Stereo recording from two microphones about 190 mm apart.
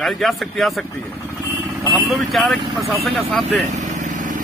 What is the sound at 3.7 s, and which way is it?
Vehicle, 40° right (ahead or behind).